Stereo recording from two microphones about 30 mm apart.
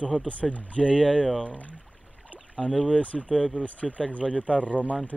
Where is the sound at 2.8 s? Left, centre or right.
Left.